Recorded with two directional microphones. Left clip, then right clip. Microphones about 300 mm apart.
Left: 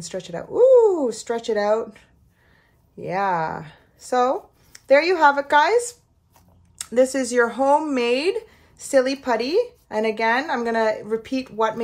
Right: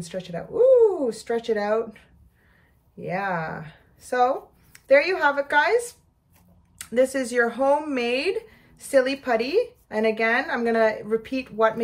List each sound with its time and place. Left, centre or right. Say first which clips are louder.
0.0 s speech: left 2 dB; centre